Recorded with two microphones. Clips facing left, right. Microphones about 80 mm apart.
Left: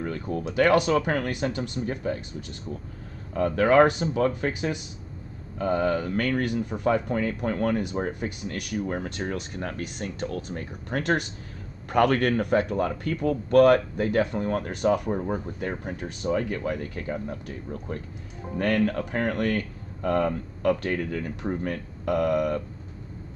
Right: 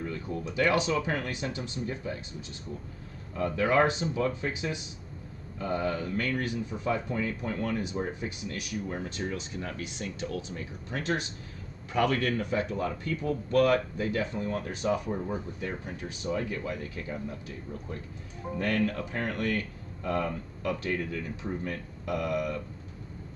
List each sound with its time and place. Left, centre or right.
0.0 s speech: left
3.3 s speech: left
18.6 s speech: left